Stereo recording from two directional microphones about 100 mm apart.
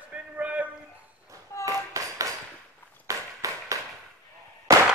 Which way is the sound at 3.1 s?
35° right (ahead or behind).